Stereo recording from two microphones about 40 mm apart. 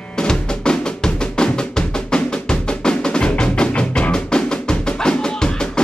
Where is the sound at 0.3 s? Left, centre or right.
Centre.